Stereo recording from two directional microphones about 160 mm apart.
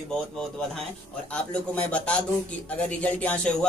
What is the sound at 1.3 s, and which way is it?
Speech, 10° left (ahead or behind).